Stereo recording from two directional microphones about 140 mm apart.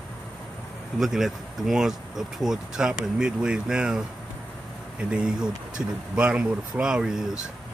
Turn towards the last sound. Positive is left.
turn(degrees=-5)  # may be behind; listen again after turning